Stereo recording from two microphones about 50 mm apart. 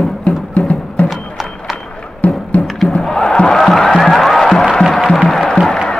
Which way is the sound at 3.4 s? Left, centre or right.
Centre.